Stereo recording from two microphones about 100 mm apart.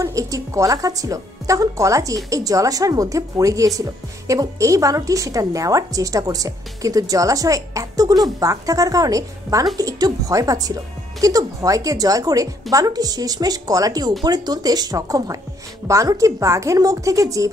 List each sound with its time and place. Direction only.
0.0 s speech: 35° right (ahead or behind)